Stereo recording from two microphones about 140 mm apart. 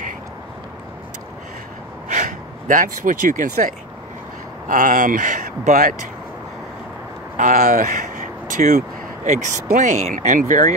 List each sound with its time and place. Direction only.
2.0 s speech: 65° right (ahead or behind)
7.3 s speech: 65° right (ahead or behind)
8.5 s speech: 60° right (ahead or behind)